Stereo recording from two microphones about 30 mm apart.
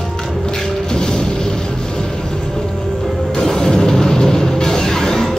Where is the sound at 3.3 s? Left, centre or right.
Centre.